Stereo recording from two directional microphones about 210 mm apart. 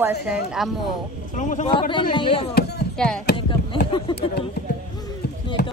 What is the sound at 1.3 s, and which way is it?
Speech, 35° left (ahead or behind).